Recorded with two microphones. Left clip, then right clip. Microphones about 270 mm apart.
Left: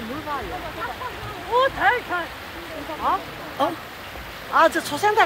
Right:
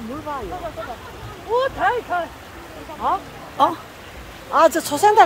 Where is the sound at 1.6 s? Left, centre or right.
Right.